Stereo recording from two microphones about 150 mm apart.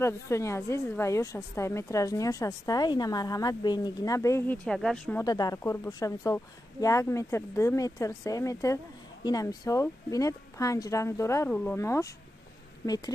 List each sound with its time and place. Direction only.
0.0 s speech: 20° left (ahead or behind)
4.6 s speech: centre (ahead or behind)
5.2 s speech: 25° left (ahead or behind)